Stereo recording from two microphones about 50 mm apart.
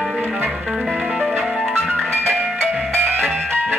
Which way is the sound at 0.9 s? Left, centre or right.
Centre.